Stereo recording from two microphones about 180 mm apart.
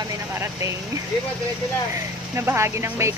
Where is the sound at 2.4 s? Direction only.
15° right (ahead or behind).